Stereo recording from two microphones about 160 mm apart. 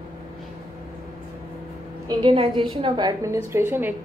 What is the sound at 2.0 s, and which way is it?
A woman's voice, 35° right (ahead or behind).